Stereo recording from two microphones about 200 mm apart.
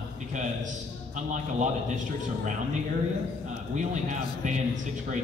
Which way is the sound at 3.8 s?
40° right (ahead or behind).